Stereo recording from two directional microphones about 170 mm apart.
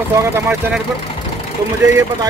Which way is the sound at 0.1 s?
15° right (ahead or behind).